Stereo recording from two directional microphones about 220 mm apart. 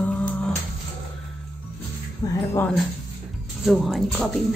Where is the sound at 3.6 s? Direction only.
Centre (ahead or behind).